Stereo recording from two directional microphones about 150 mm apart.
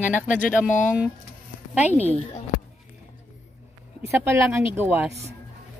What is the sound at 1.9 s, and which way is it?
Speech, 45° left (ahead or behind).